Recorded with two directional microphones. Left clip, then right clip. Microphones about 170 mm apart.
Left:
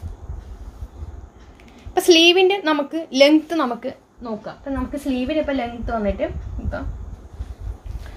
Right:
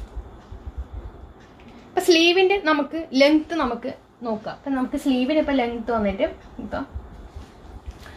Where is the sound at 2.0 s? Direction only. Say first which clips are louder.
Left 4 dB; 40° left (ahead or behind).